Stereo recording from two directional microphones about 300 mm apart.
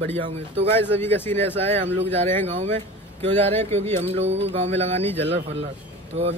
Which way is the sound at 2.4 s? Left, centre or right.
Right.